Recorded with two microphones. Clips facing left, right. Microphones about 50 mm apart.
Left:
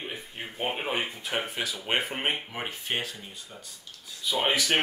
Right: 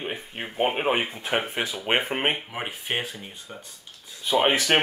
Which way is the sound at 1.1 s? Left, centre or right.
Right.